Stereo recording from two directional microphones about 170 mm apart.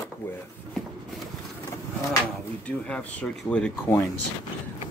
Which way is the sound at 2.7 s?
5° left (ahead or behind).